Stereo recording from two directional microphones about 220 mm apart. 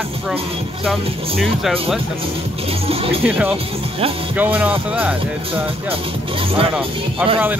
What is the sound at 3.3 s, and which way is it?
Speech, 10° right (ahead or behind).